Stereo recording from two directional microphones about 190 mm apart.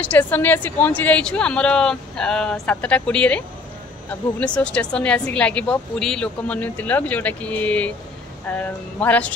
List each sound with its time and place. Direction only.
0.0 s speech: 10° left (ahead or behind)